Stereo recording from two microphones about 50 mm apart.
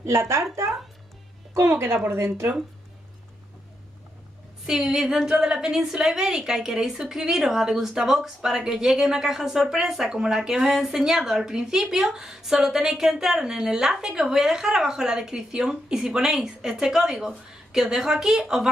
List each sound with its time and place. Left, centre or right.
0.0 s speech: right
4.6 s a woman's voice: centre